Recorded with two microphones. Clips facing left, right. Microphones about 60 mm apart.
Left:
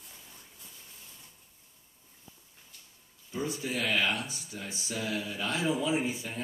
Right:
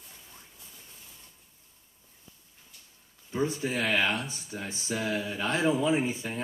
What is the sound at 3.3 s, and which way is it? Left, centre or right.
Speech, right.